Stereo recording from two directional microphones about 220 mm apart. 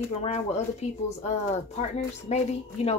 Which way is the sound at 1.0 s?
30° left (ahead or behind).